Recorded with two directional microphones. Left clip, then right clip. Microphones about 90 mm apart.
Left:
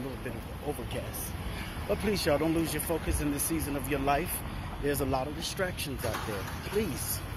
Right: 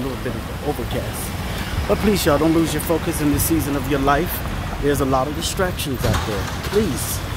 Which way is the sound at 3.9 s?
25° right (ahead or behind).